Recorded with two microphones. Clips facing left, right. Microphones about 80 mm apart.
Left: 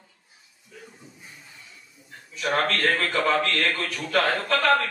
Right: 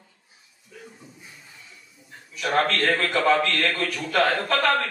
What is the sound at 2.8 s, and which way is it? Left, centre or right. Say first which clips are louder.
Speech: right 1 dB; right.